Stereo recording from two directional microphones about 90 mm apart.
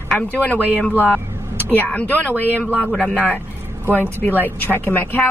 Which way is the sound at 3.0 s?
15° left (ahead or behind).